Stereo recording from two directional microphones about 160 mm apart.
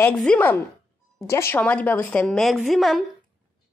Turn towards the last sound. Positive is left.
turn(degrees=0)  # may be behind; listen again after turning